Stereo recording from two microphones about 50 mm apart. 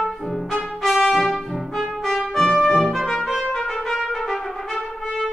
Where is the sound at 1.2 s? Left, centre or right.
Centre.